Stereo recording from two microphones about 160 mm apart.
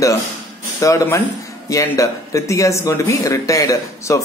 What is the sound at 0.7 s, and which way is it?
Speech, 20° left (ahead or behind).